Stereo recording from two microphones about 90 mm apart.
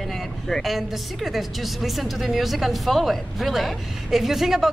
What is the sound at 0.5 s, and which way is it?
A woman's voice, centre (ahead or behind).